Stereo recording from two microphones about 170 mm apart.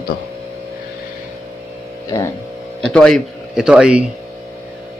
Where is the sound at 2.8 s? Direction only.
5° left (ahead or behind).